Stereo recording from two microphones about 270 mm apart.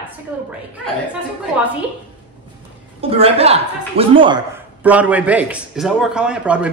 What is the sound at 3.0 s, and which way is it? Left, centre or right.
A woman's voice, right.